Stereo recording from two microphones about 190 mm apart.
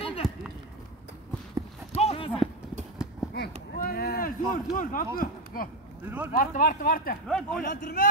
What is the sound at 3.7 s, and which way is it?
Speech, 50° left (ahead or behind).